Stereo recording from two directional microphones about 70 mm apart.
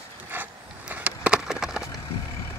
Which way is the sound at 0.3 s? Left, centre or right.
Right.